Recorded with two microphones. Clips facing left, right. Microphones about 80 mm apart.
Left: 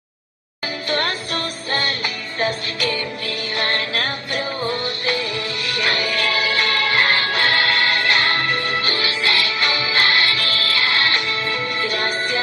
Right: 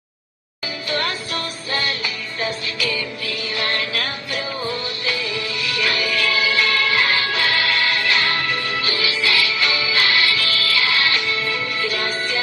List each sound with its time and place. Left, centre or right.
0.8 s music: left